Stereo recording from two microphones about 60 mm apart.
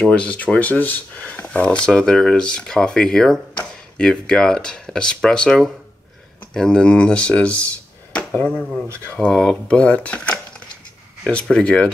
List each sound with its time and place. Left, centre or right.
0.0 s speech: centre
8.1 s a sound: centre
8.5 s speech: centre
11.5 s speech: centre